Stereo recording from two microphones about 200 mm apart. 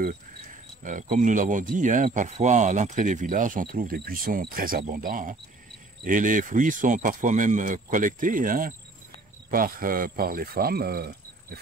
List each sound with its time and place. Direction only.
0.8 s speech: 40° right (ahead or behind)